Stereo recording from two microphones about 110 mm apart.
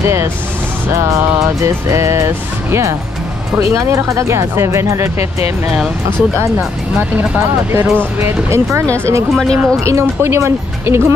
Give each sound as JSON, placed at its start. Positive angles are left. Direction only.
{"t": 0.0, "sound": "speech", "side_deg": -25}
{"t": 7.0, "sound": "speech", "side_deg": -20}
{"t": 9.3, "sound": "speech", "side_deg": 5}
{"t": 9.8, "sound": "speech", "side_deg": -25}